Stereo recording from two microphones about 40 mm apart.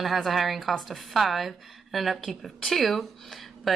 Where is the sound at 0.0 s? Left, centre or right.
Centre.